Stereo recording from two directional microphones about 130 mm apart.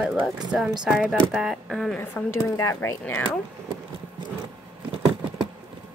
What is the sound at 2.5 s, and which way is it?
Speech, 25° left (ahead or behind).